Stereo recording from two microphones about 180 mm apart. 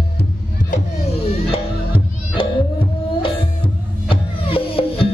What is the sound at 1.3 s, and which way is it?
Music, 30° left (ahead or behind).